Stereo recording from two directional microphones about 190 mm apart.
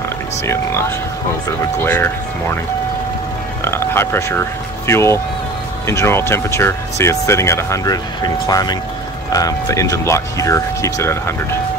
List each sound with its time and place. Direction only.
0.5 s speech: 15° left (ahead or behind)
3.6 s speech: 10° left (ahead or behind)